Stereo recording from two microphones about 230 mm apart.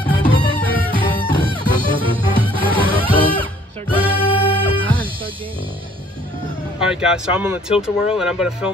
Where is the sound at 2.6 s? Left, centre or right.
Centre.